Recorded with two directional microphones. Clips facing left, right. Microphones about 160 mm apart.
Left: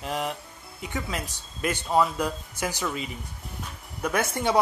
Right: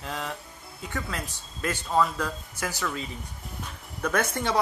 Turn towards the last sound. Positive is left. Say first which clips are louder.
# left 1 dB
turn(degrees=15)  # may be behind; listen again after turning